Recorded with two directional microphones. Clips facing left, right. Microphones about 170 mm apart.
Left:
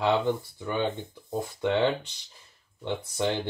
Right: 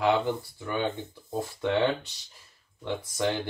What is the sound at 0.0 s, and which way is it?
Speech, 20° left (ahead or behind).